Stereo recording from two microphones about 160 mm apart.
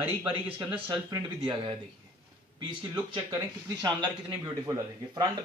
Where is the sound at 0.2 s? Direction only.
35° right (ahead or behind).